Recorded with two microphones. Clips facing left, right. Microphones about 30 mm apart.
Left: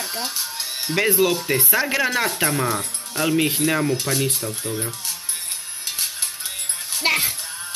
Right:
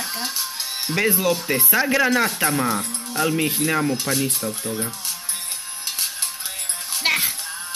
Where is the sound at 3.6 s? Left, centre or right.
Centre.